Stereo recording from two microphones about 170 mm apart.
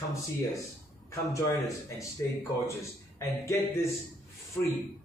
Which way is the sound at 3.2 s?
15° left (ahead or behind).